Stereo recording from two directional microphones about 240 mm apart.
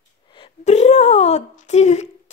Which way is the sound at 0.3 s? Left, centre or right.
Left.